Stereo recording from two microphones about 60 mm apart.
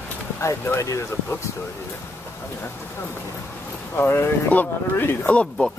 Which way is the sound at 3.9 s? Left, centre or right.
Left.